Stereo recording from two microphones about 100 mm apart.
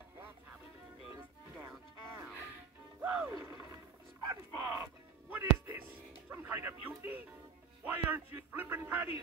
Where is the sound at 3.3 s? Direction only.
25° right (ahead or behind).